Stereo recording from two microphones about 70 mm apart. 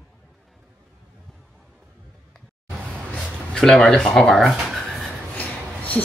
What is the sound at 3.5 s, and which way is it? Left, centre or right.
Speech, centre.